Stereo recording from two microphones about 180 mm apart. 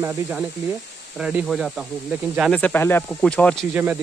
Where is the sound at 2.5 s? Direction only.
10° left (ahead or behind).